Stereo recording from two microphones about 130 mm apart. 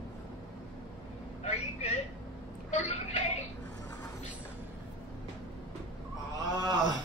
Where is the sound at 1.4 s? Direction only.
60° left (ahead or behind).